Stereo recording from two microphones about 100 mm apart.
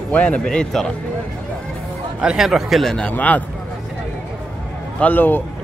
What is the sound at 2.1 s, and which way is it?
A man's voice, 5° right (ahead or behind).